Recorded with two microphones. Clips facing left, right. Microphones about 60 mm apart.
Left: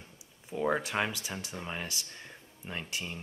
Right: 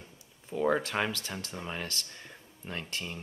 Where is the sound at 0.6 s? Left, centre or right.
Centre.